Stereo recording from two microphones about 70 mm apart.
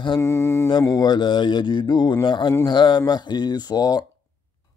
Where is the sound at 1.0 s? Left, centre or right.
Left.